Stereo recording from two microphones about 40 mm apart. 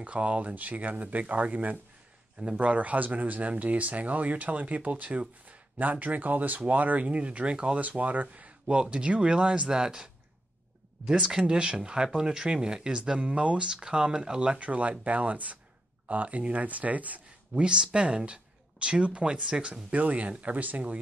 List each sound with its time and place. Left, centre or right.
0.0 s speech: right
2.3 s a man's voice: right
2.6 s speech: right
7.8 s speech: right
14.6 s speech: right
17.6 s speech: right
19.9 s speech: right